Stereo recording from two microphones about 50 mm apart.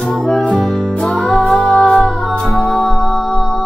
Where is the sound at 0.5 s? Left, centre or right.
Centre.